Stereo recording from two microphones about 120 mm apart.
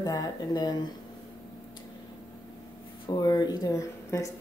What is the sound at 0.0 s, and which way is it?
Speech, 30° left (ahead or behind).